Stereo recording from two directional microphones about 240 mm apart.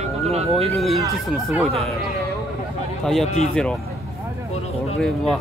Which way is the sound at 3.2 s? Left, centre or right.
Left.